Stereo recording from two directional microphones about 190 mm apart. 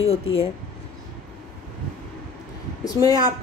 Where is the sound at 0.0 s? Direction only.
30° left (ahead or behind).